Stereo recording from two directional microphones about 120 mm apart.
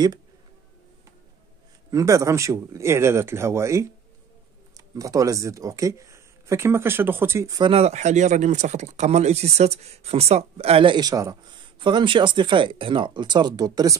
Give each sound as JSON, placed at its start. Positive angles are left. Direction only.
{"t": 1.9, "sound": "speech", "side_deg": -25}
{"t": 7.7, "sound": "speech", "side_deg": -65}
{"t": 11.0, "sound": "speech", "side_deg": -30}
{"t": 11.8, "sound": "speech", "side_deg": -45}